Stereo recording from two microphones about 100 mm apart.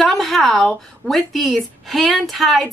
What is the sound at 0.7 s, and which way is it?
Speech, 5° left (ahead or behind).